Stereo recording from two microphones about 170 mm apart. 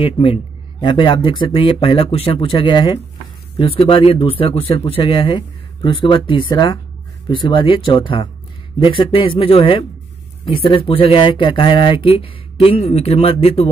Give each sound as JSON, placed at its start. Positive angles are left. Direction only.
{"t": 0.0, "sound": "a man's voice", "side_deg": 35}